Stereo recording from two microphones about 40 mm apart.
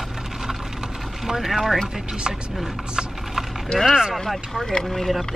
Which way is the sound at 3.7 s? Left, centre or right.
Centre.